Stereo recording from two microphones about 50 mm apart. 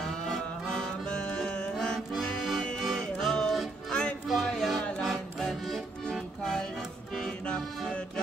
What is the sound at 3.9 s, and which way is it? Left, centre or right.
Music, left.